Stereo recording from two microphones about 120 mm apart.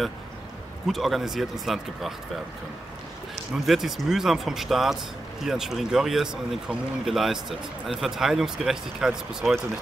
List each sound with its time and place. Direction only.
0.8 s speech: centre (ahead or behind)
3.6 s speech: centre (ahead or behind)